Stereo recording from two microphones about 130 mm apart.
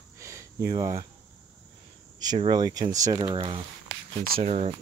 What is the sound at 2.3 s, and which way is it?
Speech, 35° right (ahead or behind).